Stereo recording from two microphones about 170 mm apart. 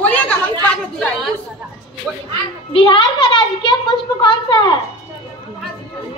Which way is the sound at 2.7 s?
30° left (ahead or behind).